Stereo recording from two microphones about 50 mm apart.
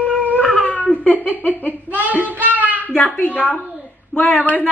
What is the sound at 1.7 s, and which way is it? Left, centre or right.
A child's voice, right.